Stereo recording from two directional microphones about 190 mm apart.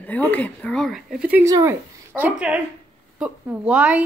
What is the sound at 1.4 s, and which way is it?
A woman's voice, 15° right (ahead or behind).